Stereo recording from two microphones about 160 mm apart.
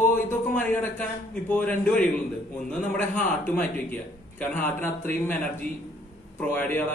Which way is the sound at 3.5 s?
10° left (ahead or behind).